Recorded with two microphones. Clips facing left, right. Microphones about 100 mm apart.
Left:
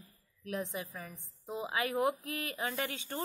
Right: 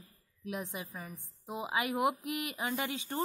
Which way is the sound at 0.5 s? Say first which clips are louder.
Left 1 dB; 20° right (ahead or behind).